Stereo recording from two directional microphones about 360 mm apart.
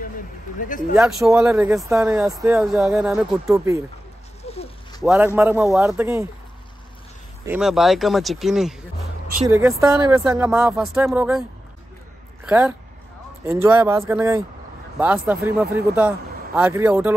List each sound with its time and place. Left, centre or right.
0.6 s speech: left
0.9 s speech: centre
4.4 s patter: centre
5.0 s speech: centre
7.4 s speech: centre
12.4 s speech: centre
15.5 s speech: right
16.5 s speech: centre